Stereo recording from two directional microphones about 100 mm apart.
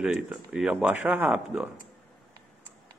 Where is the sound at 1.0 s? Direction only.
20° right (ahead or behind).